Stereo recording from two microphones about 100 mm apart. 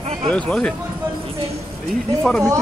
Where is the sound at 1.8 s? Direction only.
5° left (ahead or behind).